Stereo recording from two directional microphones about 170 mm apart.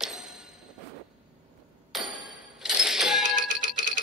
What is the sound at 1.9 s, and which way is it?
Music, centre (ahead or behind).